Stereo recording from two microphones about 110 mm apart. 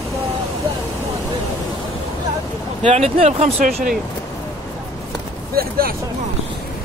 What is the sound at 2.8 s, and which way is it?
Speech, 80° right.